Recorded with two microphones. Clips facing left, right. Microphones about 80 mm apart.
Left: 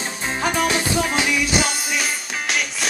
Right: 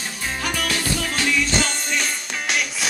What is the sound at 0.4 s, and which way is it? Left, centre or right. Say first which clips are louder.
Music: left 6 dB; left.